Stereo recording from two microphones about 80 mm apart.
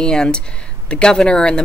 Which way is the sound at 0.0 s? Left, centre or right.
Centre.